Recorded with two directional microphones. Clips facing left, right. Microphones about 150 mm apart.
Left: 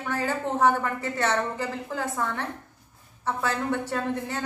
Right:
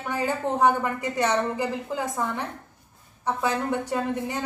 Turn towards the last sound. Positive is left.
turn(degrees=-15)  # may be behind; listen again after turning